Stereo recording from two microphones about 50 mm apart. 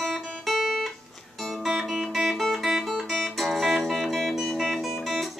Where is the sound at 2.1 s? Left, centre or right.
Centre.